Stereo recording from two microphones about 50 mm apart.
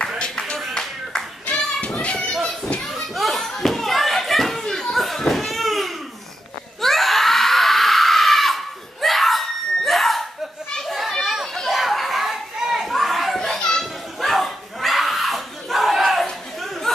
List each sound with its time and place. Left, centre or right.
0.2 s music: centre
1.4 s children playing: left
2.9 s a sound: centre
4.9 s children playing: centre
5.5 s a sound: centre
6.8 s screaming: centre
10.9 s children playing: centre
11.5 s a sound: centre
12.9 s children playing: centre